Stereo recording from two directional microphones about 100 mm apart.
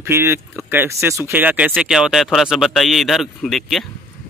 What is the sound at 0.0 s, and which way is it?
Speech, 25° right (ahead or behind).